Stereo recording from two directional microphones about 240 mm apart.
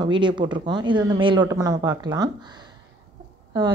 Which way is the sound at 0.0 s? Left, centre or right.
Centre.